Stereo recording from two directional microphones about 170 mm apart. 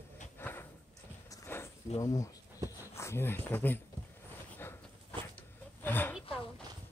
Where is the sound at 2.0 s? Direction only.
20° left (ahead or behind).